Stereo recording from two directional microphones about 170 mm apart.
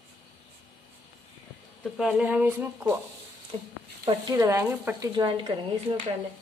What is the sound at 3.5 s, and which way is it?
Speech, 30° right (ahead or behind).